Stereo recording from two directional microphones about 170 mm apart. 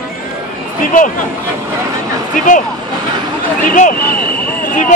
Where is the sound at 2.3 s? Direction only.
50° left (ahead or behind).